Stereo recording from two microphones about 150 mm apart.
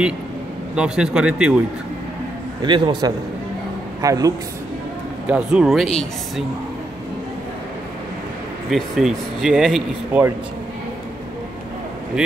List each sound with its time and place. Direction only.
0.7 s speech: 5° right (ahead or behind)
2.6 s a man's voice: 30° right (ahead or behind)
5.2 s speech: 5° right (ahead or behind)
8.6 s speech: centre (ahead or behind)